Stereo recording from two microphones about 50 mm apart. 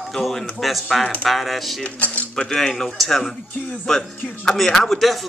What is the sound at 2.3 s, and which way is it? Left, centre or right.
Speech, centre.